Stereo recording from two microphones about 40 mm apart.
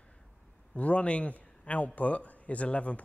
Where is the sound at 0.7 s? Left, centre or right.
Left.